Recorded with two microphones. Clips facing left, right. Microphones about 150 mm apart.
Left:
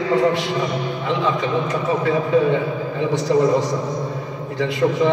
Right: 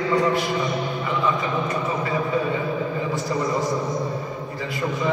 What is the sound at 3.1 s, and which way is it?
A man's voice, 85° left.